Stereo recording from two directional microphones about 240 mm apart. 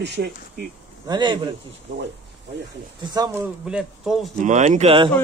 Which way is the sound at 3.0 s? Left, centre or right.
Centre.